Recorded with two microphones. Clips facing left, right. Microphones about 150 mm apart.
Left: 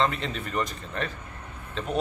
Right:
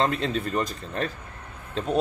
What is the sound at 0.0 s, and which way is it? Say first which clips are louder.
A man's voice: right 3 dB; 35° right (ahead or behind).